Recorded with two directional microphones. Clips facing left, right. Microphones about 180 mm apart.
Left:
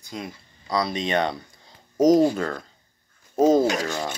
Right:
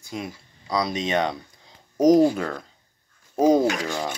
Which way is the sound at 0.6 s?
Centre (ahead or behind).